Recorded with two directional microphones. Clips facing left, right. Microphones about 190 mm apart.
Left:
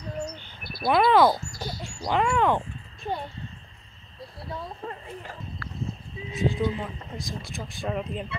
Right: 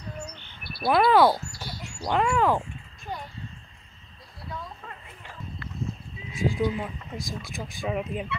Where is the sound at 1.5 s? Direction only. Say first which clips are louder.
Left 4 dB; 45° left (ahead or behind).